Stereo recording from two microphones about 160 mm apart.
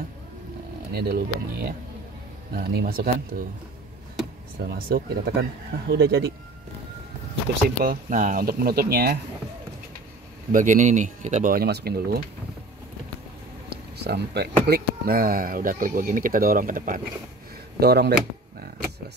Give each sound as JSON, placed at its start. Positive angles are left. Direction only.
{"t": 0.9, "sound": "speech", "side_deg": -75}
{"t": 4.6, "sound": "speech", "side_deg": -65}
{"t": 7.8, "sound": "speech", "side_deg": -60}
{"t": 10.5, "sound": "speech", "side_deg": -50}
{"t": 11.5, "sound": "speech", "side_deg": -75}
{"t": 13.7, "sound": "speech", "side_deg": -90}
{"t": 17.7, "sound": "speech", "side_deg": -85}